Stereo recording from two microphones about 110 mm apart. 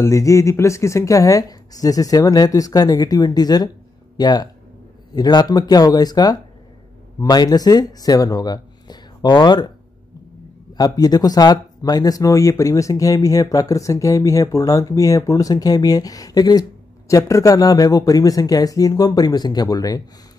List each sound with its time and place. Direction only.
0.0 s speech: 30° left (ahead or behind)
10.7 s speech: 35° left (ahead or behind)